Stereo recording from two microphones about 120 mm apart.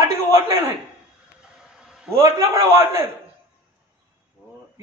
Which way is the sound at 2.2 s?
25° right (ahead or behind).